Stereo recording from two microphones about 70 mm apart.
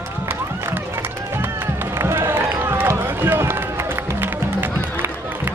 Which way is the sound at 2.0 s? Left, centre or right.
Right.